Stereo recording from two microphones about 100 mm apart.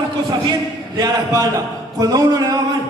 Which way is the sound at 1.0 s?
40° right (ahead or behind).